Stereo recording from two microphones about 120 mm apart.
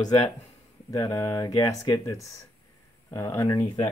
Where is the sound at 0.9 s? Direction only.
25° left (ahead or behind).